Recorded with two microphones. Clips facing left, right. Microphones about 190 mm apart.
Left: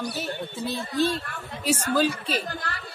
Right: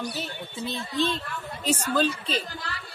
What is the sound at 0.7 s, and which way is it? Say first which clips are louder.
A woman's voice: left 2 dB; 10° left (ahead or behind).